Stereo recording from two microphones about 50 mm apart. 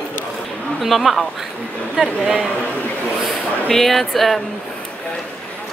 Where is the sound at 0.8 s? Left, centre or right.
Centre.